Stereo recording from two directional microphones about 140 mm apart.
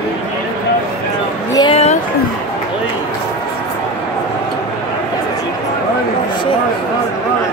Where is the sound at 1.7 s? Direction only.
45° left (ahead or behind).